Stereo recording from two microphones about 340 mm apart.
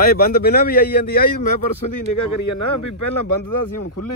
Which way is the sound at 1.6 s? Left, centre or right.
Left.